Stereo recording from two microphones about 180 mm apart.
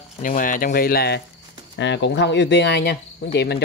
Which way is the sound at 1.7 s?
85° left.